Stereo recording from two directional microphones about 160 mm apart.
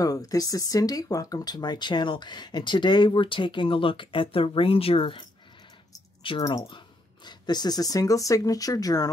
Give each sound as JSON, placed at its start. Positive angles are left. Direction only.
{"t": 0.0, "sound": "speech", "side_deg": 20}
{"t": 6.4, "sound": "speech", "side_deg": 25}